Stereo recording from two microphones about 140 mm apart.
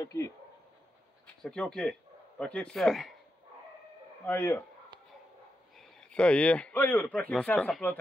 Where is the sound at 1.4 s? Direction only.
5° left (ahead or behind).